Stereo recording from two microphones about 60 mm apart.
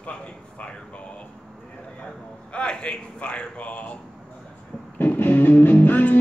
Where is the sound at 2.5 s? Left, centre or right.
Centre.